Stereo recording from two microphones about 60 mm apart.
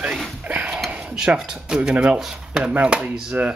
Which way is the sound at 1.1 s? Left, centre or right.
Centre.